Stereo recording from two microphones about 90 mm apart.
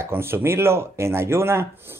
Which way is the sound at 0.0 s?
25° right (ahead or behind).